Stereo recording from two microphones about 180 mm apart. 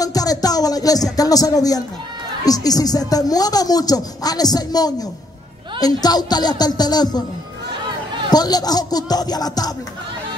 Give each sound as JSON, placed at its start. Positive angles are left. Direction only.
{"t": 0.0, "sound": "music", "side_deg": 20}
{"t": 2.4, "sound": "speech", "side_deg": 20}
{"t": 8.3, "sound": "speech", "side_deg": 20}